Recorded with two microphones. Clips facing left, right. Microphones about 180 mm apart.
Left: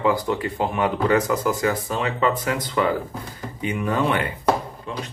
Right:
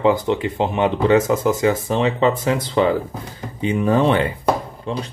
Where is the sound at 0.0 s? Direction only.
25° right (ahead or behind).